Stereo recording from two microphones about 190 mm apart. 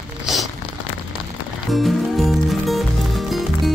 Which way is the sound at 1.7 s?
Centre (ahead or behind).